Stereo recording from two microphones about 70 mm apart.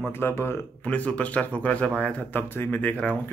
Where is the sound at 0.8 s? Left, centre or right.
Left.